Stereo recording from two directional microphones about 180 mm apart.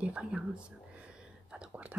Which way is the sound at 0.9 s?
5° right (ahead or behind).